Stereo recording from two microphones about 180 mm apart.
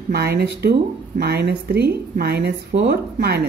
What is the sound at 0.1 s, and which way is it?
Speech, 60° right (ahead or behind).